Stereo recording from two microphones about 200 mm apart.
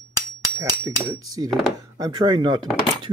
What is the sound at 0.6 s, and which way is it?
Speech, 15° right (ahead or behind).